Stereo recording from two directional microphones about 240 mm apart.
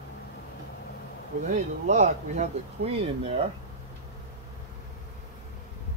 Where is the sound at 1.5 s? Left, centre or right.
Right.